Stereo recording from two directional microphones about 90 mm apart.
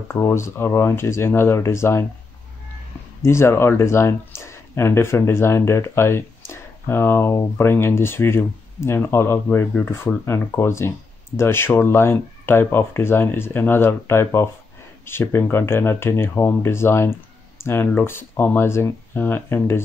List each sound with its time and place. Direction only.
0.1 s speech: 30° left (ahead or behind)
3.3 s speech: 30° left (ahead or behind)